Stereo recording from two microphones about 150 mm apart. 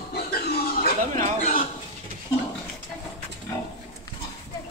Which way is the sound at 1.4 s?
60° left (ahead or behind).